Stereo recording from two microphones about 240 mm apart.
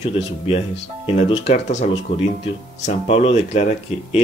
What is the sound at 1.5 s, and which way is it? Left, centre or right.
Speech, left.